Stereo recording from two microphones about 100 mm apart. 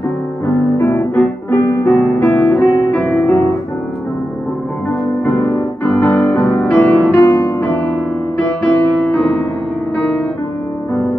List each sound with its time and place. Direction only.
0.7 s music: 25° left (ahead or behind)
5.2 s music: 15° left (ahead or behind)